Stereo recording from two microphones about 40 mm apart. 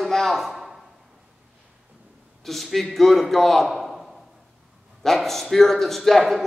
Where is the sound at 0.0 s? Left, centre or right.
Centre.